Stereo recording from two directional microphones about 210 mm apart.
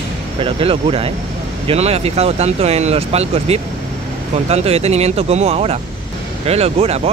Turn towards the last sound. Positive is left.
turn(degrees=-30)  # may be behind; listen again after turning